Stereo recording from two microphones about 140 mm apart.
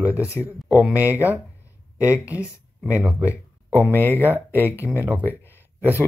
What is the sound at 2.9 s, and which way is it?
Speech, 10° right (ahead or behind).